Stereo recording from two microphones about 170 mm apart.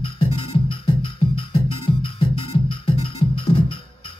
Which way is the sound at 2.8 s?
30° left (ahead or behind).